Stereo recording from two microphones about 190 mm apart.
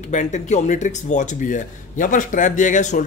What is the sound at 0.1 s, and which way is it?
A man's voice, 40° left (ahead or behind).